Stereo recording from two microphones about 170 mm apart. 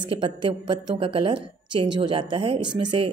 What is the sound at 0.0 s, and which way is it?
A woman's voice, 30° right (ahead or behind).